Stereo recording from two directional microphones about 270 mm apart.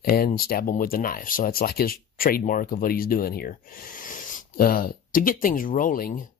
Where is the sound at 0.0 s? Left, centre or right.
Left.